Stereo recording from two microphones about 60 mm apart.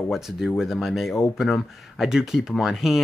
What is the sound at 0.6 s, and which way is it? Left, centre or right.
Speech, centre.